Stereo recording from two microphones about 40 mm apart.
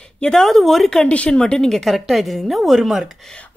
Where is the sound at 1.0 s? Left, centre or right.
Left.